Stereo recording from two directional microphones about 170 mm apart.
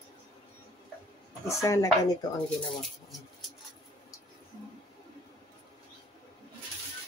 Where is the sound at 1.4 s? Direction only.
20° left (ahead or behind).